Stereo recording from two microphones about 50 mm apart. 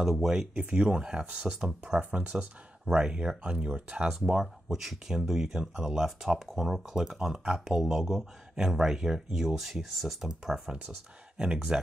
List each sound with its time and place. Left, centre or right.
0.0 s speech: centre
2.0 s speech: right
4.1 s speech: centre